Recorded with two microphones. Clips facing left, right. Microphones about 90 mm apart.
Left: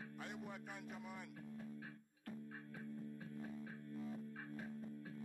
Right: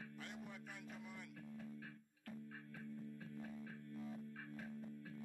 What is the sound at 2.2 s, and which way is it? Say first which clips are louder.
Music: left 2 dB; 25° left (ahead or behind).